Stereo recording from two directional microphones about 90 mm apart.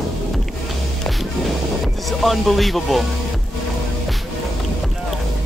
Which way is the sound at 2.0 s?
Centre (ahead or behind).